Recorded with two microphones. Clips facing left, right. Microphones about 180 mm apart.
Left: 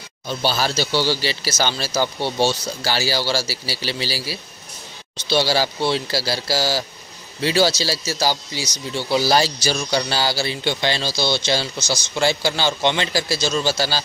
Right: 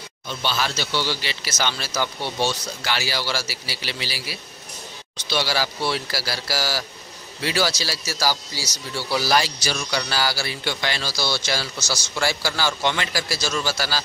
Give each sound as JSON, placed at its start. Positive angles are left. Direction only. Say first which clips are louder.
{"t": 0.3, "sound": "speech", "louder": "left 4 dB", "side_deg": 35}